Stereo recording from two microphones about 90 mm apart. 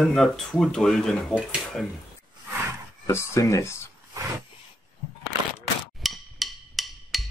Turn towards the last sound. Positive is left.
turn(degrees=0)  # may be behind; listen again after turning